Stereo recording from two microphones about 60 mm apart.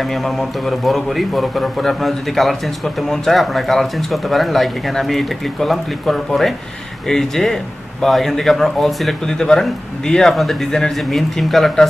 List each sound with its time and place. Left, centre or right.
0.0 s a man's voice: centre